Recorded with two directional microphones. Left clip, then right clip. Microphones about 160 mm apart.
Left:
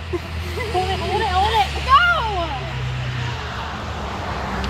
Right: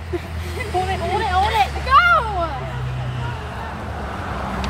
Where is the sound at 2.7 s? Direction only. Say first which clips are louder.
Left 1 dB; 45° right (ahead or behind); by 4.6 s 65° right (ahead or behind).